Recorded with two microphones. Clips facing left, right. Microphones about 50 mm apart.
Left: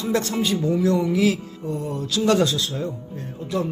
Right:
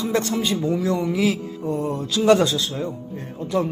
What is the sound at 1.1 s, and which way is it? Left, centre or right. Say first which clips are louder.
Speech: left 1 dB; centre.